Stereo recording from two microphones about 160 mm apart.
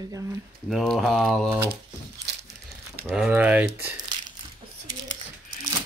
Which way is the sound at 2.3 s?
90° right.